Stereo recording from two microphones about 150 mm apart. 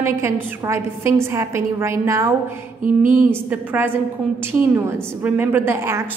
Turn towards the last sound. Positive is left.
turn(degrees=-15)  # may be behind; listen again after turning